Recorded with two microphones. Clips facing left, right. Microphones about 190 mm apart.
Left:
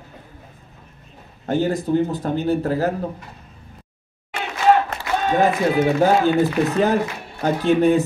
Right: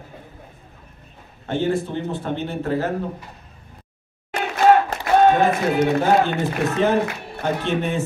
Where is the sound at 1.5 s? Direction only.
40° left (ahead or behind).